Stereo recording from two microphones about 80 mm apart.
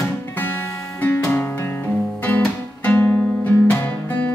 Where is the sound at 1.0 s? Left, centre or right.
Left.